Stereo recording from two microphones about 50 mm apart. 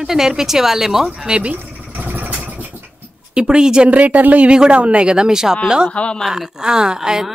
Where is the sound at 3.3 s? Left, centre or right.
Centre.